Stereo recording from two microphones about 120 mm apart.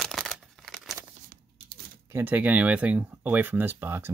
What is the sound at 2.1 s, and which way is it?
Speech, 15° right (ahead or behind).